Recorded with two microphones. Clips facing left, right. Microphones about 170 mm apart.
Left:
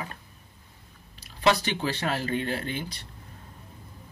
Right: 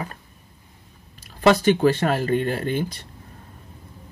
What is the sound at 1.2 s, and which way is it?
Speech, 50° right (ahead or behind).